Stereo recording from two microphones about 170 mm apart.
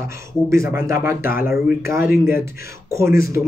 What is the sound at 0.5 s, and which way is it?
A man's voice, 15° right (ahead or behind).